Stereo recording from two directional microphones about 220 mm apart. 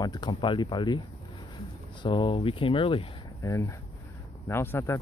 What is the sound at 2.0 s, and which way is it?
Speech, 20° left (ahead or behind).